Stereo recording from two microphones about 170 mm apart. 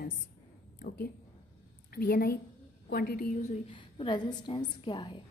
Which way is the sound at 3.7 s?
30° left (ahead or behind).